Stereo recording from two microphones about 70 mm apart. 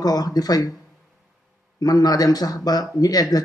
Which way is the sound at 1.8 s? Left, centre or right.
Left.